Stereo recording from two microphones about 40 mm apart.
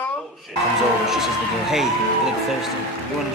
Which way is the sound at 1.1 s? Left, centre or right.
Centre.